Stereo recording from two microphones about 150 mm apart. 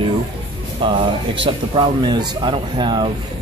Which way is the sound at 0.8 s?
35° right (ahead or behind).